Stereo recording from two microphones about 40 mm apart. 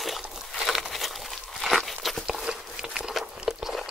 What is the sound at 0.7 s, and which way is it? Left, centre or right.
Crumpling, centre.